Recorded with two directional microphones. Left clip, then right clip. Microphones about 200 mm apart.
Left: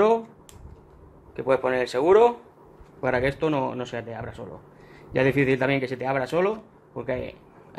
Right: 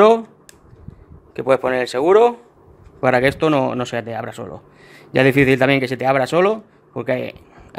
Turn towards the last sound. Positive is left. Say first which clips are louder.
# right 8 dB
turn(degrees=-55)  # may be behind; listen again after turning